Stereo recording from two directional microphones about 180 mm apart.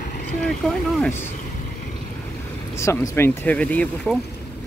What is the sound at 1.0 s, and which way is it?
Speech, 15° left (ahead or behind).